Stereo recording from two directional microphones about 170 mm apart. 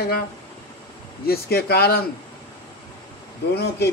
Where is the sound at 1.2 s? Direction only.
65° left (ahead or behind).